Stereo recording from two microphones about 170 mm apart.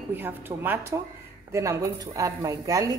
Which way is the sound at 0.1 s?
10° right (ahead or behind).